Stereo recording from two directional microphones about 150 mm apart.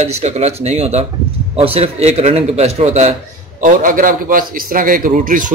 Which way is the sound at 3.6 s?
65° right (ahead or behind).